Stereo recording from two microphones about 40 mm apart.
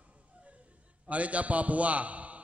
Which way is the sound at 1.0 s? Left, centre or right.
Right.